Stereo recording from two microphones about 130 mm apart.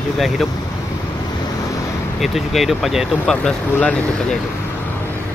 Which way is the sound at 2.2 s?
Centre (ahead or behind).